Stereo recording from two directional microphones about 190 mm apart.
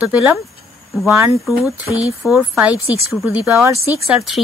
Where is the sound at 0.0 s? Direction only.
10° right (ahead or behind).